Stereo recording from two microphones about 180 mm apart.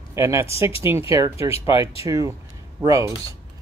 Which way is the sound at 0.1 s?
15° right (ahead or behind).